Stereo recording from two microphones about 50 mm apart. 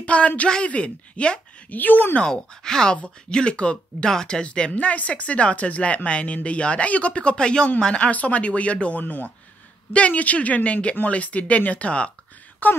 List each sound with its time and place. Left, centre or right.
0.0 s speech: left
1.7 s speech: left
2.1 s speech: centre
8.1 s speech: left
12.6 s speech: left